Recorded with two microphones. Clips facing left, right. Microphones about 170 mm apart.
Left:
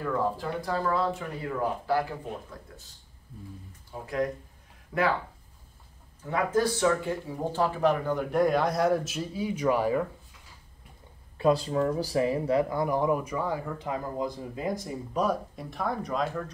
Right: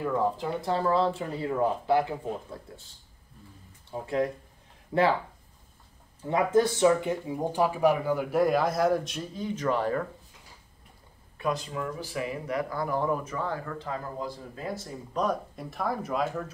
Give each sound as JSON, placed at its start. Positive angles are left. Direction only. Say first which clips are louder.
{"t": 0.0, "sound": "speech", "louder": "right 1 dB", "side_deg": -15}
{"t": 3.9, "sound": "speech", "louder": "right 2 dB", "side_deg": -25}
{"t": 6.2, "sound": "speech", "louder": "right 3 dB", "side_deg": -20}
{"t": 11.3, "sound": "speech", "louder": "left 7 dB", "side_deg": 30}